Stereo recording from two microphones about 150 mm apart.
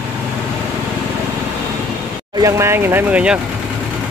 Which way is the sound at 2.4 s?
15° right (ahead or behind).